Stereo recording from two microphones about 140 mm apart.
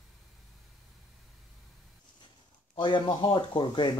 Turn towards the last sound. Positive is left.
turn(degrees=35)  # may be behind; listen again after turning